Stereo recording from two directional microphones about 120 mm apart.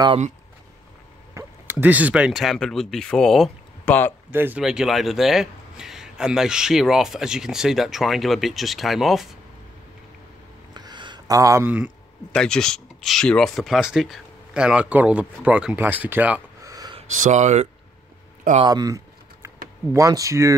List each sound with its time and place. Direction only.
1.3 s a sound: 15° right (ahead or behind)
2.3 s a man's voice: 5° left (ahead or behind)
3.8 s speech: 15° left (ahead or behind)
4.3 s speech: 15° right (ahead or behind)
4.6 s a man's voice: 5° right (ahead or behind)
10.7 s a sound: 35° right (ahead or behind)
11.6 s speech: 10° right (ahead or behind)
12.3 s speech: 5° left (ahead or behind); by 16.4 s 15° right (ahead or behind)
16.6 s a sound: 30° right (ahead or behind)
17.2 s speech: 80° right
18.7 s typing: 30° right (ahead or behind)